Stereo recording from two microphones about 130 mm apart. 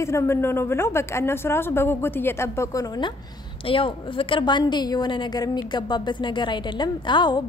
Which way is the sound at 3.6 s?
45° left (ahead or behind).